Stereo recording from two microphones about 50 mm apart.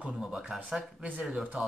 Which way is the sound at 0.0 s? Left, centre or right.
Centre.